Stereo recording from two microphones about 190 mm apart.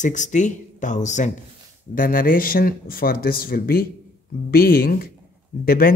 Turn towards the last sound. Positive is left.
turn(degrees=50)  # may be behind; listen again after turning